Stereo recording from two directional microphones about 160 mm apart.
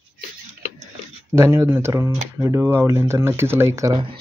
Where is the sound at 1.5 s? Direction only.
15° right (ahead or behind).